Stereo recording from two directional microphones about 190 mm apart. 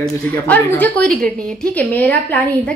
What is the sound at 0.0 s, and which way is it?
A woman's voice, 10° left (ahead or behind).